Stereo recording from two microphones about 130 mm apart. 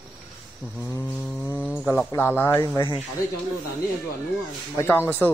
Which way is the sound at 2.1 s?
20° left (ahead or behind).